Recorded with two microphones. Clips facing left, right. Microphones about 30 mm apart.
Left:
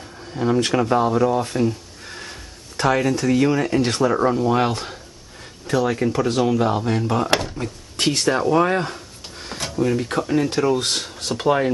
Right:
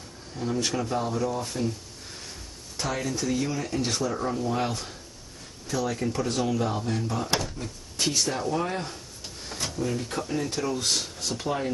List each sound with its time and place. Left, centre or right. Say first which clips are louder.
0.3 s speech: left 9 dB; left
7.6 s a sound: left 7 dB; left
9.8 s speech: left 10 dB; left